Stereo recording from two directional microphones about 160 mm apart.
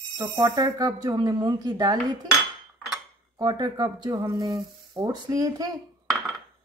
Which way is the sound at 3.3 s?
25° right (ahead or behind).